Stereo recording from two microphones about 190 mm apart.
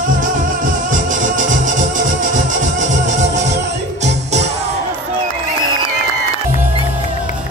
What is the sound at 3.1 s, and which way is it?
Music, 40° right (ahead or behind).